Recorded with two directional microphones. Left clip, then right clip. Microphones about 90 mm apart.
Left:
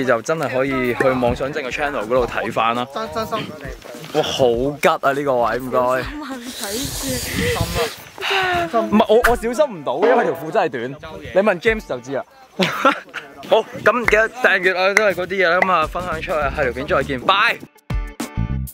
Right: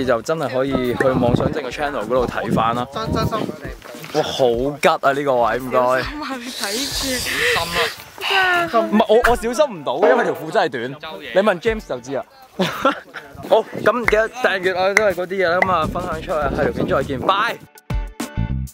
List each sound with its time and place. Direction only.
0.0 s speech: 10° right (ahead or behind)
4.2 s speech: centre (ahead or behind)
4.8 s speech: 10° right (ahead or behind)
6.1 s snake: 30° right (ahead or behind)
6.6 s speech: 15° right (ahead or behind)
7.3 s speech: 50° right (ahead or behind)
8.2 s a sound: 10° right (ahead or behind)
8.9 s speech: 5° right (ahead or behind)
12.2 s speech: centre (ahead or behind)